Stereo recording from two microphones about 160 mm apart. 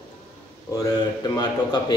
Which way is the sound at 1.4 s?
25° left (ahead or behind).